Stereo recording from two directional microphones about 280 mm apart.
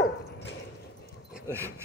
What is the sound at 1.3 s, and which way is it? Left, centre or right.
Dog, centre.